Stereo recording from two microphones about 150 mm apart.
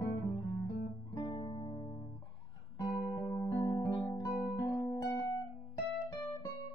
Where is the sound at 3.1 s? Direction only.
25° left (ahead or behind).